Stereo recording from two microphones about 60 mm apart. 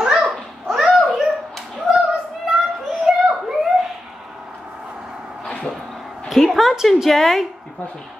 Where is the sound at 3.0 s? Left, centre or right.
Centre.